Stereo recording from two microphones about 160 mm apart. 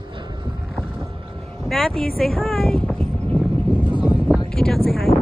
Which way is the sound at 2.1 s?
5° left (ahead or behind).